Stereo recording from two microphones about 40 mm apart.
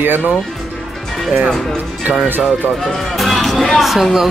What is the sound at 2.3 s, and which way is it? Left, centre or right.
Speech, right.